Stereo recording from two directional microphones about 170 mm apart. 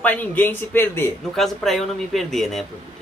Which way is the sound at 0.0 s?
10° left (ahead or behind).